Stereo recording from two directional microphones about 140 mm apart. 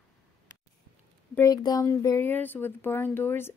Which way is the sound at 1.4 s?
25° left (ahead or behind).